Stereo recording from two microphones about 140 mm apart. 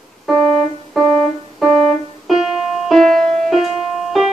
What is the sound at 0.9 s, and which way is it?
Music, centre (ahead or behind).